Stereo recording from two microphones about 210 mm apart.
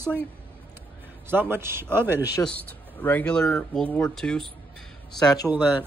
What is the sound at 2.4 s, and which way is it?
Speech, 5° left (ahead or behind).